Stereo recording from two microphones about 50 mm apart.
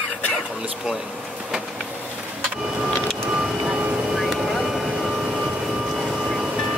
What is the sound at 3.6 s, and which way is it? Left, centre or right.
Vehicle, centre.